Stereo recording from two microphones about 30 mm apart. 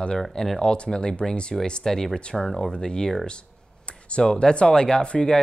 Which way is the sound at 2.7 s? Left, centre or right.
Left.